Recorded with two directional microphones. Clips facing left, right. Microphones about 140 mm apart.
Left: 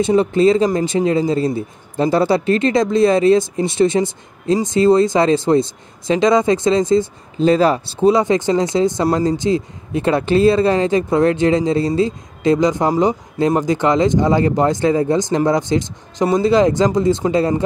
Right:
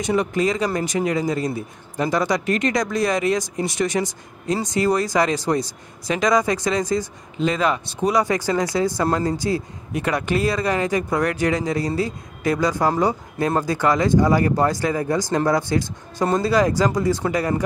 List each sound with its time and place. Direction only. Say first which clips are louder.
0.0 s a man's voice: left 7 dB; 30° left (ahead or behind)